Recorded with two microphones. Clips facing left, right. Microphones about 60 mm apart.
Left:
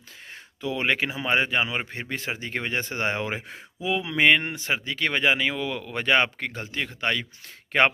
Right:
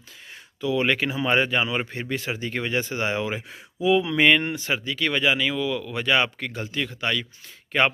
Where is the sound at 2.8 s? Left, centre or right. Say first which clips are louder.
Right 1 dB; left.